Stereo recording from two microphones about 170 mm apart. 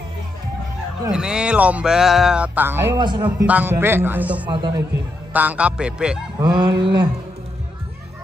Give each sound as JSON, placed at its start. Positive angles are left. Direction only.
{"t": 1.1, "sound": "music", "side_deg": -5}
{"t": 3.0, "sound": "a man's voice", "side_deg": -25}
{"t": 3.4, "sound": "a man's voice", "side_deg": -10}
{"t": 4.5, "sound": "a man's voice", "side_deg": -25}
{"t": 5.3, "sound": "a man's voice", "side_deg": -10}
{"t": 6.4, "sound": "a man's voice", "side_deg": -25}